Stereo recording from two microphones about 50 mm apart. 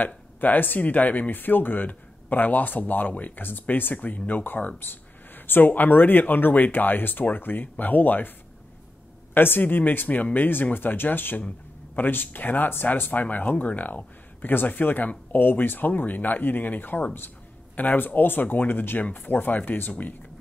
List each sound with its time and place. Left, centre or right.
0.0 s speech: left
9.3 s speech: left
11.4 s a sound: left
12.1 s speech: left